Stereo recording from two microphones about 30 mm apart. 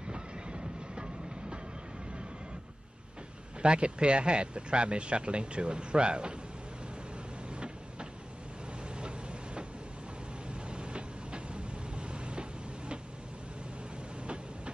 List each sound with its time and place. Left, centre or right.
0.1 s train: right
3.6 s speech: right
7.4 s vehicle: right
10.5 s train: right